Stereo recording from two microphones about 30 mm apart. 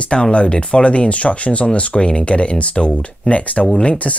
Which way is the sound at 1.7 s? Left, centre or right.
Left.